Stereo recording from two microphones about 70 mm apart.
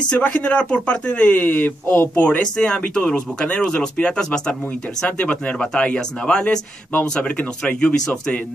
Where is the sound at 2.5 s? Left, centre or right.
Centre.